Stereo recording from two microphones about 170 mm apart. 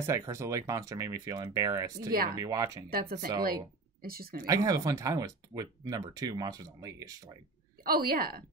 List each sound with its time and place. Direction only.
0.0 s speech: 15° right (ahead or behind)
2.9 s a woman's voice: 60° right (ahead or behind)
4.5 s speech: 20° right (ahead or behind)
7.8 s a woman's voice: 60° right (ahead or behind)